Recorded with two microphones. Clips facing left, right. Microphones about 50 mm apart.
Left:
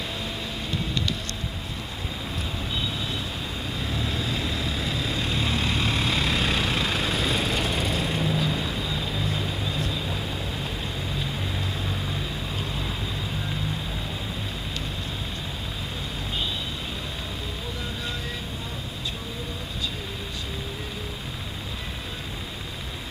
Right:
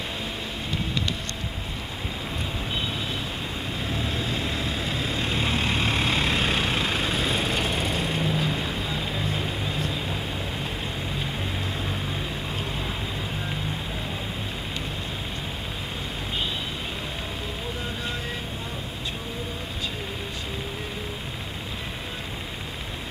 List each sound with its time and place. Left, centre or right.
3.8 s vehicle: centre